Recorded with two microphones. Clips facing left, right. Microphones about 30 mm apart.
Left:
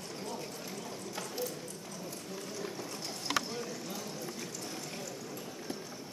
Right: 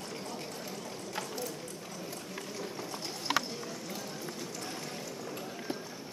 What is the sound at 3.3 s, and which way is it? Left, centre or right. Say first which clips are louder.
Run: right 2 dB; centre.